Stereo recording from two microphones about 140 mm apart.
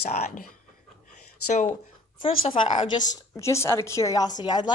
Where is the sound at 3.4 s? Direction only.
20° left (ahead or behind).